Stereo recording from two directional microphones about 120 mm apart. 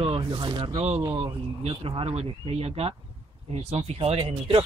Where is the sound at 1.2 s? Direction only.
60° right (ahead or behind).